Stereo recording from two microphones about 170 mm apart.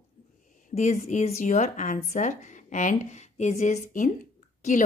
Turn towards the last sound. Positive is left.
turn(degrees=45)  # may be behind; listen again after turning